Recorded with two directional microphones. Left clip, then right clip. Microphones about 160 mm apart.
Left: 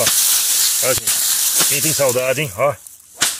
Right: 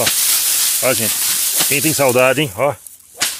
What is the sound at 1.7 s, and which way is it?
Speech, 45° right (ahead or behind).